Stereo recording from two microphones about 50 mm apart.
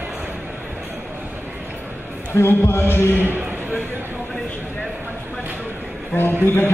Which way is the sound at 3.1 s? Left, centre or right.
Right.